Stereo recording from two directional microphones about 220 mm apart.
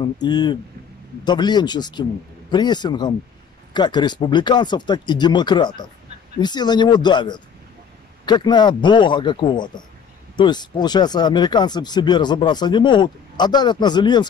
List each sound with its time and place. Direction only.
0.0 s speech: 20° left (ahead or behind)